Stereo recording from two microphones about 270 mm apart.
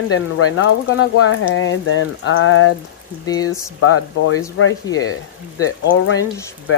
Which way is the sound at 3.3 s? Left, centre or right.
Centre.